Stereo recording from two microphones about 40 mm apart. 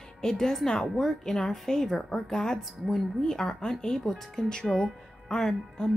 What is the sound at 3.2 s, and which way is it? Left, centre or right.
Speech, centre.